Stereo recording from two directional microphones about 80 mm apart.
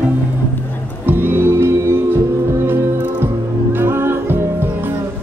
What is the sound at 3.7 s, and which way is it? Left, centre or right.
Music, right.